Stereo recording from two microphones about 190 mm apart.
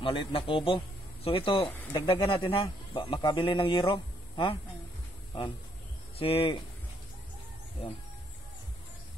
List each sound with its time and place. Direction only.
0.0 s a man's voice: 25° left (ahead or behind)
6.1 s a man's voice: 30° left (ahead or behind)